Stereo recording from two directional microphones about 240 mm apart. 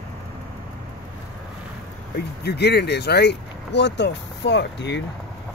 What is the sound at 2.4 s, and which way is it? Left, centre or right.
Speech, left.